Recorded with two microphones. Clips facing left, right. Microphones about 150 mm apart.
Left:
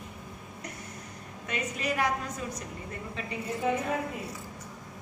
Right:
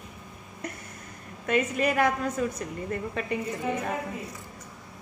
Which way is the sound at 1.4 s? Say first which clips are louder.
Right 9 dB; 55° right (ahead or behind).